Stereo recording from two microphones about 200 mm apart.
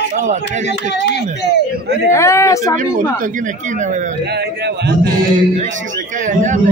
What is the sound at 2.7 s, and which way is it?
Speech, 40° right (ahead or behind).